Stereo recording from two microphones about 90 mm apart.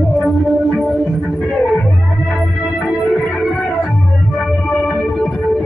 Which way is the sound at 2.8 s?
15° left (ahead or behind).